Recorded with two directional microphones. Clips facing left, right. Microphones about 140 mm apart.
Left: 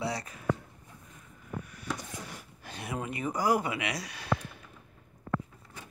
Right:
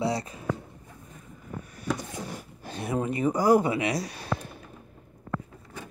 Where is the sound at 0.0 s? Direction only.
25° right (ahead or behind).